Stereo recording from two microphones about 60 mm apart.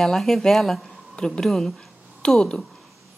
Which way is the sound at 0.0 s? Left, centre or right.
Centre.